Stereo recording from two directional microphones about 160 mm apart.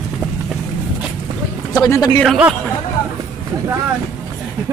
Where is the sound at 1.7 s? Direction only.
25° left (ahead or behind).